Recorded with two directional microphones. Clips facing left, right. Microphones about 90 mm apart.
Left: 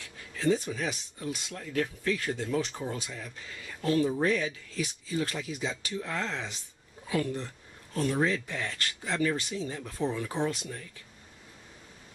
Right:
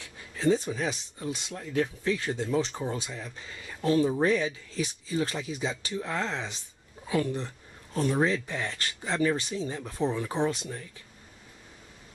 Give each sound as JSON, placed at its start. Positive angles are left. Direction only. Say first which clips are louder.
{"t": 0.0, "sound": "speech", "louder": "right 2 dB", "side_deg": -20}